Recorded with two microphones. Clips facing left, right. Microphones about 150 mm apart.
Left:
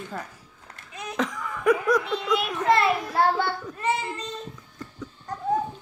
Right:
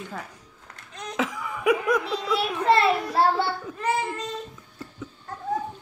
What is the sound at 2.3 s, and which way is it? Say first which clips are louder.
A child's voice: right 1 dB; 30° right (ahead or behind).